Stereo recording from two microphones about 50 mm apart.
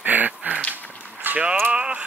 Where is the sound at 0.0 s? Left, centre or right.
Right.